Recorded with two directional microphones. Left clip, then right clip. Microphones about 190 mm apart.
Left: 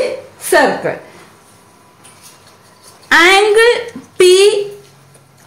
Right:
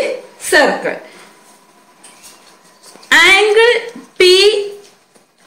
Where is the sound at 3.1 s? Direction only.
45° left (ahead or behind).